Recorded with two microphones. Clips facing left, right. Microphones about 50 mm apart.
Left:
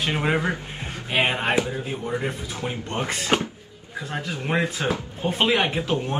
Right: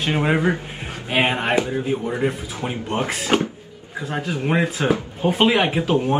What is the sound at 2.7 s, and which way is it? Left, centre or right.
Speech, centre.